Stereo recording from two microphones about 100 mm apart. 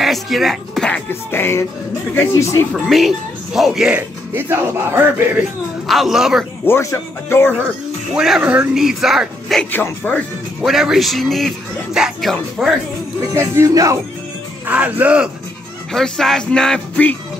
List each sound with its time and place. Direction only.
0.0 s speech: centre (ahead or behind)
1.3 s speech: 25° left (ahead or behind)
2.7 s a man's voice: centre (ahead or behind)
3.9 s speech: 20° right (ahead or behind)
5.9 s a man's voice: centre (ahead or behind)
6.6 s speech: 25° left (ahead or behind)
8.1 s a man's voice: 5° right (ahead or behind)
9.7 s speech: 20° left (ahead or behind)
10.6 s a man's voice: 5° right (ahead or behind)
13.3 s speech: 30° right (ahead or behind)
14.7 s speech: 15° right (ahead or behind)
15.9 s a man's voice: 5° left (ahead or behind)